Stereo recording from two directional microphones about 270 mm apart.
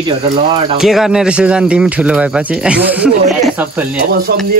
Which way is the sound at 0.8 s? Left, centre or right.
Centre.